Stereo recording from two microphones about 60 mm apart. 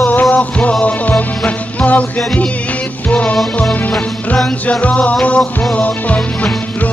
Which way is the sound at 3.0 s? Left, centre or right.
Left.